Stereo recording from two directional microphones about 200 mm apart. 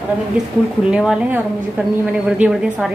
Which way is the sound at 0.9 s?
5° right (ahead or behind).